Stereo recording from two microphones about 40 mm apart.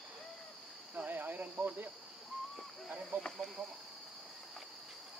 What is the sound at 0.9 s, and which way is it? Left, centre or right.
Speech, right.